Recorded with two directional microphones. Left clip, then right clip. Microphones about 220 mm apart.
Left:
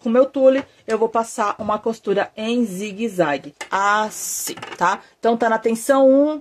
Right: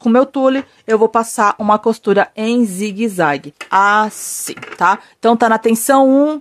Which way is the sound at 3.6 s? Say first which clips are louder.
Right 7 dB; 35° right (ahead or behind).